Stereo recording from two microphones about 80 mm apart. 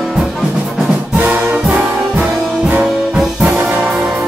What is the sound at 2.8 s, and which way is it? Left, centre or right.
Music, centre.